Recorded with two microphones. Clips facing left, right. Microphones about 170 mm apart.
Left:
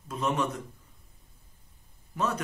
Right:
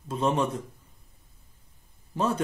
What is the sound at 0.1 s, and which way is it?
Speech, 30° right (ahead or behind).